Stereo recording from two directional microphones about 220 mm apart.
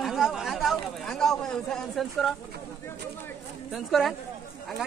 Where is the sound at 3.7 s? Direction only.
Centre (ahead or behind).